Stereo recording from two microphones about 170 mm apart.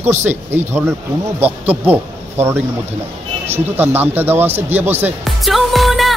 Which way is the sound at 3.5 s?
10° right (ahead or behind).